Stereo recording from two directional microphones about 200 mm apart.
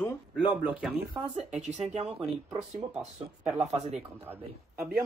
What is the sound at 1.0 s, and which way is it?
Speech, 30° right (ahead or behind).